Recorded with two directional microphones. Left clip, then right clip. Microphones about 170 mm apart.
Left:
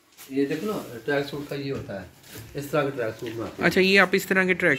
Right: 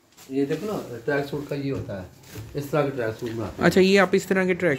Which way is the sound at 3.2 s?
25° right (ahead or behind).